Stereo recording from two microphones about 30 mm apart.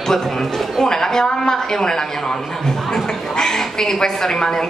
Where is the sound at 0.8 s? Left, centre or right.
Centre.